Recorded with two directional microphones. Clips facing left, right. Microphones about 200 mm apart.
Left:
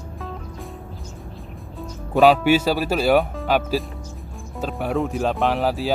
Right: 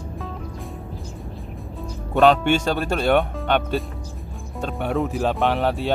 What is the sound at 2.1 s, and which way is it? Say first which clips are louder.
Speech: left 1 dB; 5° left (ahead or behind).